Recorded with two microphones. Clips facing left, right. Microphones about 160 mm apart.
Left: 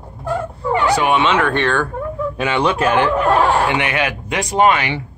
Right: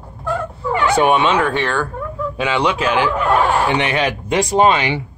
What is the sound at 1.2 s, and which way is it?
Speech, 10° right (ahead or behind).